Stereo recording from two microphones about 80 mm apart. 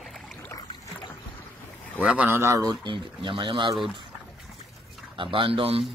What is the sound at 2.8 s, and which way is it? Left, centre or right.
Speech, right.